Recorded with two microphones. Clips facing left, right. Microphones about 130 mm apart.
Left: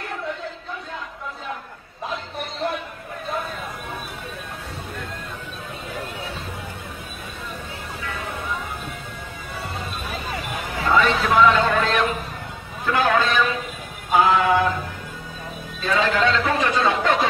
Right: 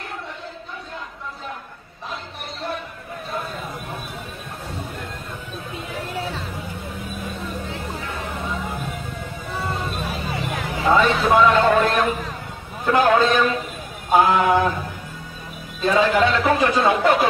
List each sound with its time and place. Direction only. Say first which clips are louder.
10.8 s a sound: right 2 dB; 15° right (ahead or behind)
12.8 s a man's voice: right 4 dB; 15° right (ahead or behind)
15.8 s a man's voice: right 3 dB; 15° right (ahead or behind)